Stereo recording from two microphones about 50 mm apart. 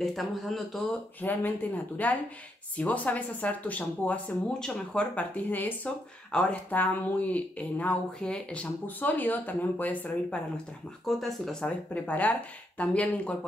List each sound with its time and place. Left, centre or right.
0.0 s speech: centre
1.2 s speech: left
4.6 s speech: centre
5.1 s speech: left
6.3 s speech: left
6.7 s speech: left
8.8 s speech: left
11.1 s speech: centre
11.6 s speech: left